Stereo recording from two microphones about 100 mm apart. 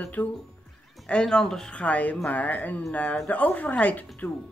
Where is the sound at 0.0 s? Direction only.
15° left (ahead or behind).